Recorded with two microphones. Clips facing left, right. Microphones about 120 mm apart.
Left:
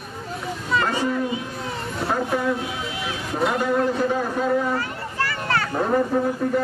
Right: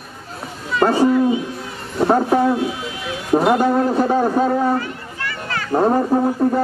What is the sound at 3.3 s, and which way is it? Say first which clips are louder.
A man's voice: right 7 dB; 50° right (ahead or behind).